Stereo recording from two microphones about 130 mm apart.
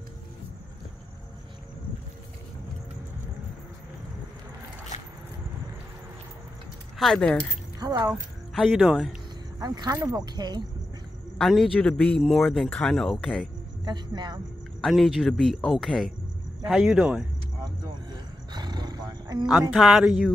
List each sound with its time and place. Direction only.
7.0 s speech: 5° left (ahead or behind)
9.6 s speech: 30° right (ahead or behind)
11.3 s speech: centre (ahead or behind)
13.8 s speech: 35° right (ahead or behind)
14.8 s speech: centre (ahead or behind)
18.5 s roar: 35° right (ahead or behind)
19.7 s speech: centre (ahead or behind)